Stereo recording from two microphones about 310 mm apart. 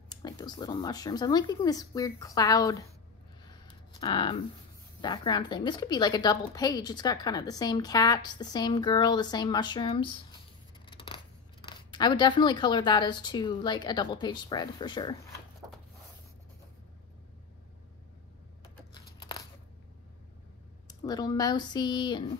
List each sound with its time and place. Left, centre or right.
0.1 s a woman's voice: centre
4.0 s a woman's voice: centre
10.9 s scissors: centre
11.6 s a woman's voice: centre
18.9 s a sound: centre
20.8 s a woman's voice: centre